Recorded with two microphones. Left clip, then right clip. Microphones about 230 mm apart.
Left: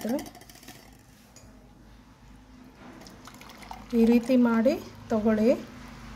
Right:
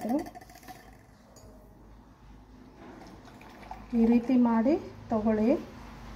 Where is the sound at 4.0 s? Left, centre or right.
Left.